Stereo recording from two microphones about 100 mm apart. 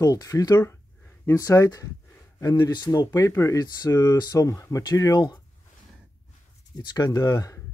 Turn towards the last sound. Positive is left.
turn(degrees=35)  # may be behind; listen again after turning